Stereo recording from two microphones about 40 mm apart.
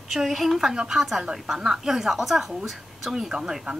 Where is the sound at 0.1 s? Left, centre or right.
Centre.